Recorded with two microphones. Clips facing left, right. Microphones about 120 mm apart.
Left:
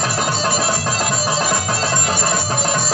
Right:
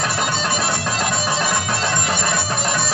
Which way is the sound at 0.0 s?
40° left (ahead or behind).